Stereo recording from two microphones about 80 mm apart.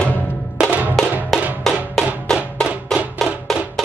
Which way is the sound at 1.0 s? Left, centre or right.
Centre.